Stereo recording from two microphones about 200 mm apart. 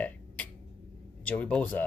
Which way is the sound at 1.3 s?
5° left (ahead or behind).